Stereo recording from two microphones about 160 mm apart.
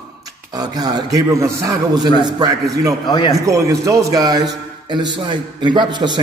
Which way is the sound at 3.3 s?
20° right (ahead or behind).